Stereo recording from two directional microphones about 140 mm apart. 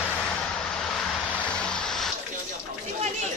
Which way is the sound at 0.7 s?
5° left (ahead or behind).